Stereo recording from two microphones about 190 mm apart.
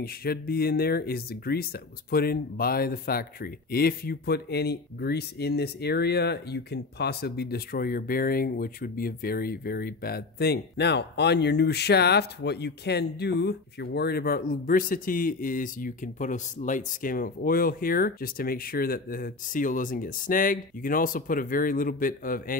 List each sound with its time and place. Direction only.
0.0 s speech: 55° left (ahead or behind)